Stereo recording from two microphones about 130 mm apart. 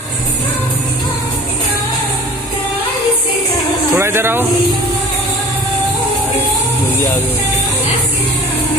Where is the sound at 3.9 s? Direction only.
20° right (ahead or behind).